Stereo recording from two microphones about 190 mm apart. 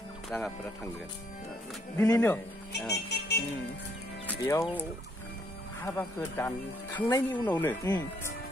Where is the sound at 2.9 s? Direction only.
60° left (ahead or behind).